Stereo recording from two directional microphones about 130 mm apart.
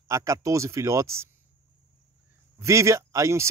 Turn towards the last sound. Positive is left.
turn(degrees=-20)  # may be behind; listen again after turning